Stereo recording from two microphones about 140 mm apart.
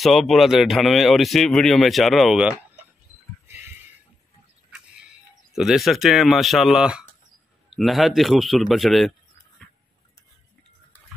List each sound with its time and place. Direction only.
0.0 s speech: centre (ahead or behind)
3.4 s a sound: 15° right (ahead or behind)
5.5 s speech: centre (ahead or behind)